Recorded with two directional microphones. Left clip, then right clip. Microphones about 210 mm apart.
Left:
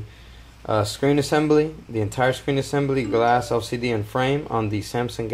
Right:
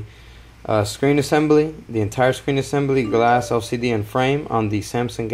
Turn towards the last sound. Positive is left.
turn(degrees=-15)  # may be behind; listen again after turning